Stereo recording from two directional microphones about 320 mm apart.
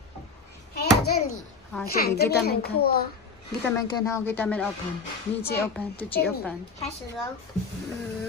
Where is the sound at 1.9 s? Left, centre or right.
Left.